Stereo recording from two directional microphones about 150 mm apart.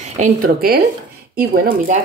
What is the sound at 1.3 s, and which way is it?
Speech, 80° right.